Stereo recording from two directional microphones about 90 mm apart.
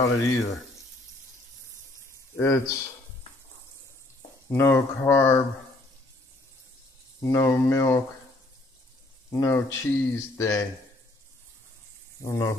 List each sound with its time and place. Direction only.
0.0 s speech: 35° left (ahead or behind)
2.3 s speech: 30° left (ahead or behind)
4.5 s speech: 30° left (ahead or behind)
7.2 s speech: 35° left (ahead or behind)
9.3 s speech: 35° left (ahead or behind)
12.2 s speech: 35° left (ahead or behind)